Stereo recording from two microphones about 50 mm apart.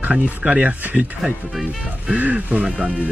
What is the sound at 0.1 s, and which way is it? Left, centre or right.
Speech, right.